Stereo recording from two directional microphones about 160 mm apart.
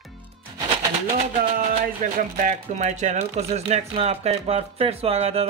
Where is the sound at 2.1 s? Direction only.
50° right (ahead or behind).